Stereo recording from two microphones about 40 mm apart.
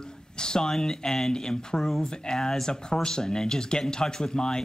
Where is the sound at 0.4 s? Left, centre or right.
Centre.